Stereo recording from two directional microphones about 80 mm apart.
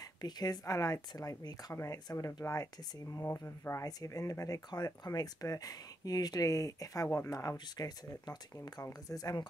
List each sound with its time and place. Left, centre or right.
0.0 s speech: left
3.8 s speech: left
7.5 s speech: left